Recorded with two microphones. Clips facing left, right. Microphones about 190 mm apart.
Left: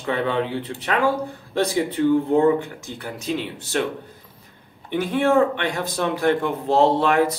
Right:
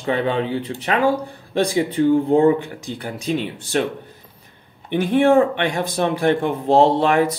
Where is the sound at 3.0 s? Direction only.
15° right (ahead or behind).